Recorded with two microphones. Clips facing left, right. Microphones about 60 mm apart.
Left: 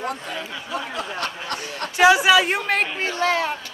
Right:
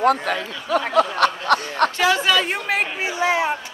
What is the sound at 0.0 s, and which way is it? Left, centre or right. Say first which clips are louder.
Speech: right 10 dB; right.